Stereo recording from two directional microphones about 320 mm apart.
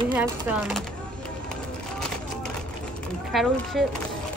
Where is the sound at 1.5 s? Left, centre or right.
Centre.